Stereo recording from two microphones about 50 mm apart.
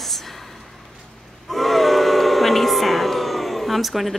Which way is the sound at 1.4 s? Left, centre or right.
Centre.